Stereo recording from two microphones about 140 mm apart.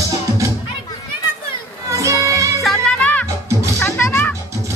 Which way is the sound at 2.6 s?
5° left (ahead or behind).